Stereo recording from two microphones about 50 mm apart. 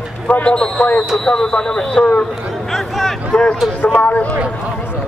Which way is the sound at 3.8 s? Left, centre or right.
Left.